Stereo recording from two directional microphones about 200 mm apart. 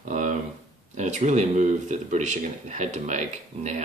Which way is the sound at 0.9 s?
35° right (ahead or behind).